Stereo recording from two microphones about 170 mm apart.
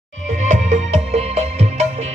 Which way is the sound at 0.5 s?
40° right (ahead or behind).